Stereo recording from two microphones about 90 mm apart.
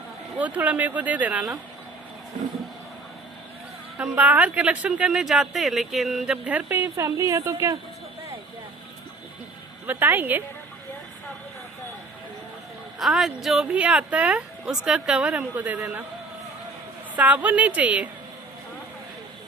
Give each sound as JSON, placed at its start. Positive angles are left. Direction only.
{"t": 0.4, "sound": "speech", "side_deg": -15}
{"t": 4.0, "sound": "speech", "side_deg": -20}
{"t": 7.0, "sound": "a woman's voice", "side_deg": -35}
{"t": 9.8, "sound": "a woman's voice", "side_deg": -20}
{"t": 13.0, "sound": "speech", "side_deg": 0}
{"t": 13.7, "sound": "speech", "side_deg": -15}
{"t": 17.1, "sound": "speech", "side_deg": -15}